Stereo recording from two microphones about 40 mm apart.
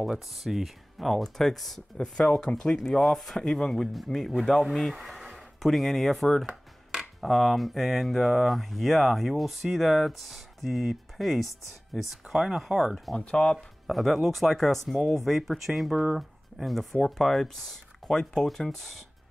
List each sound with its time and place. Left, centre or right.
0.0 s speech: centre
2.0 s speech: centre
3.0 s speech: centre
7.2 s speech: centre
13.2 s speech: left
13.9 s speech: centre
16.9 s speech: centre